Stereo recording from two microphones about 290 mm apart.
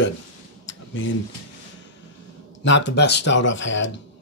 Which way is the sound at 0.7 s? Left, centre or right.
Left.